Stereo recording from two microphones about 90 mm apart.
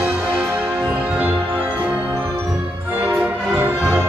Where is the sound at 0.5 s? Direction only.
20° right (ahead or behind).